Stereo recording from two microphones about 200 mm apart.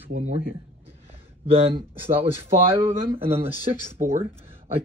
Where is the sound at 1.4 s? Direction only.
30° right (ahead or behind).